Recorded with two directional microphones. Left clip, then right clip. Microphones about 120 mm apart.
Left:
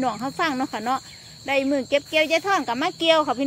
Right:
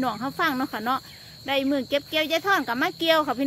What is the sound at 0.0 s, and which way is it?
Speech, 5° left (ahead or behind).